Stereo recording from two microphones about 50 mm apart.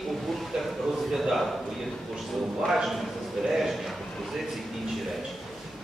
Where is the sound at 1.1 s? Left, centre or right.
Centre.